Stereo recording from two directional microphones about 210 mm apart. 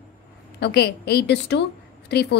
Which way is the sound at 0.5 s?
50° left (ahead or behind).